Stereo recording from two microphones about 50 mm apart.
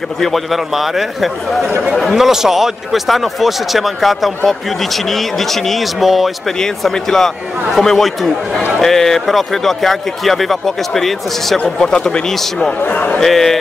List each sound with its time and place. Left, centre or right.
0.2 s speech: centre
6.6 s a man's voice: centre
11.6 s a man's voice: centre
12.8 s a man's voice: left
13.2 s speech: centre